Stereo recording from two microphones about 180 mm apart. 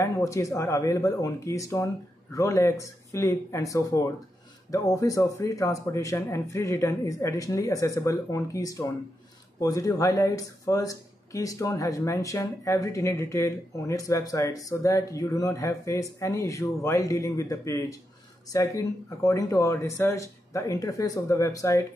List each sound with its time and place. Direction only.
0.0 s speech: 15° left (ahead or behind)